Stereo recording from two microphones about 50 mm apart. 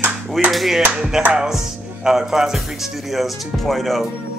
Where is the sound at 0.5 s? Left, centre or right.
Centre.